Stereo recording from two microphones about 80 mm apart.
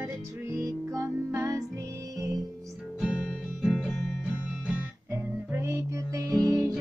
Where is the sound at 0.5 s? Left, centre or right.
Right.